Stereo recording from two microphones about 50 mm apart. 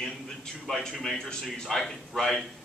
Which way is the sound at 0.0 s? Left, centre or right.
Centre.